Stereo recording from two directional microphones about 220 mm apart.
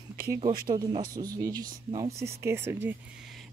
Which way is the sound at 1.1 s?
15° right (ahead or behind).